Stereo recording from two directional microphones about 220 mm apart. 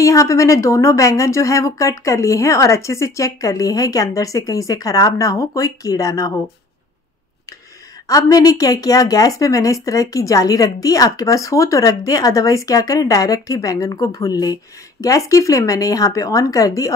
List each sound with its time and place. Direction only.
0.0 s speech: 15° left (ahead or behind)
8.1 s speech: 15° left (ahead or behind)